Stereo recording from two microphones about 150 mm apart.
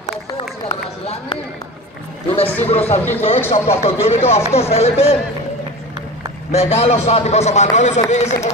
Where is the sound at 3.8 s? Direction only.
45° left (ahead or behind).